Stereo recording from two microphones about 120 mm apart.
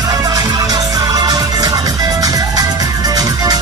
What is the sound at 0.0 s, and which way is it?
Music, 35° right (ahead or behind).